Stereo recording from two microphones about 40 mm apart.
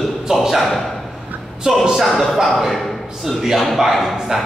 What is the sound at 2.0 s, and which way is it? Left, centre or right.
Speech, centre.